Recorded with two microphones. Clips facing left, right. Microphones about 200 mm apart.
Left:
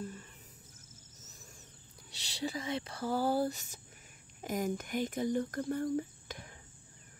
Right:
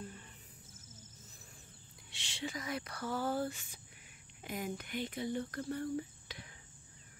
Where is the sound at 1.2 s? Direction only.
45° left (ahead or behind).